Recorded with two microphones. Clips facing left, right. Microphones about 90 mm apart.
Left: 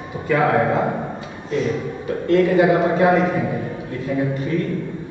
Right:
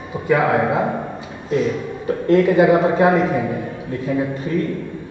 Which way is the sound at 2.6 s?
20° right (ahead or behind).